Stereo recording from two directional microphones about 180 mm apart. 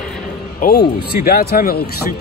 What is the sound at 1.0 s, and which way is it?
Speech, 60° left (ahead or behind).